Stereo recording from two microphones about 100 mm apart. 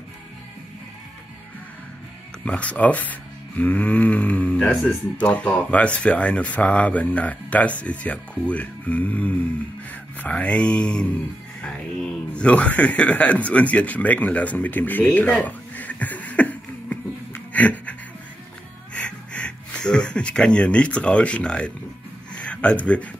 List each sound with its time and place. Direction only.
2.4 s speech: 15° left (ahead or behind)
18.9 s speech: 10° left (ahead or behind)
22.3 s a sound: 10° left (ahead or behind)